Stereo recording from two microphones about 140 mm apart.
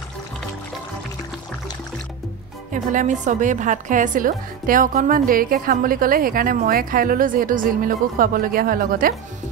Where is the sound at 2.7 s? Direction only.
65° right (ahead or behind); by 9.1 s 90° right.